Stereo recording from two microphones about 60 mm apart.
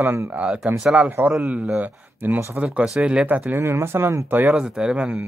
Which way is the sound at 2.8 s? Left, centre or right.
Centre.